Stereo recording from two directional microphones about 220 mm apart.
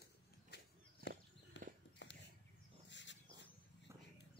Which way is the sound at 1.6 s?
55° left (ahead or behind).